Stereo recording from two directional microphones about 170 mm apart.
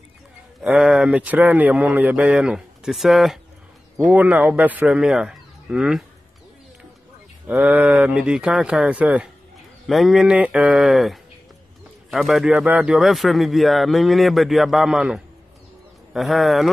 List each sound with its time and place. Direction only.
0.6 s a man's voice: 5° right (ahead or behind)
7.4 s a man's voice: 5° right (ahead or behind)